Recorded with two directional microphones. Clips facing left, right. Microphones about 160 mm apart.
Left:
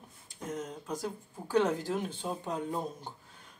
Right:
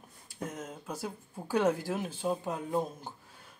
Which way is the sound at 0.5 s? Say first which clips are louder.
Left 7 dB; 5° right (ahead or behind).